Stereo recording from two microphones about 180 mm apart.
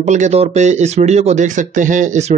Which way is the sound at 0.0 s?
40° right (ahead or behind).